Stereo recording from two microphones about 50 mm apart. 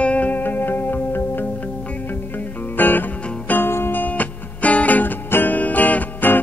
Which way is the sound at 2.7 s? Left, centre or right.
Left.